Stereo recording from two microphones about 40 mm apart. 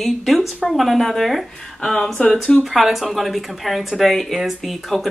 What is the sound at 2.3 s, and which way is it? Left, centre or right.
Speech, left.